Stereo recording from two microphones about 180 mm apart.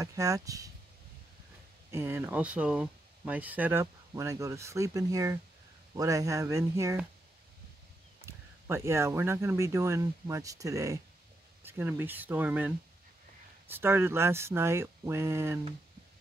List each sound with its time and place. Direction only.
0.0 s speech: 20° right (ahead or behind)
1.9 s speech: 10° right (ahead or behind)
8.3 s speech: 15° right (ahead or behind)